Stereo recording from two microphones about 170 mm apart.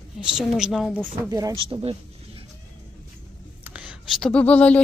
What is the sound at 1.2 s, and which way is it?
Speech, 20° right (ahead or behind).